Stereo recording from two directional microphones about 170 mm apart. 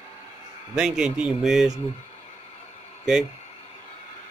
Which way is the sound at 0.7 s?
5° right (ahead or behind).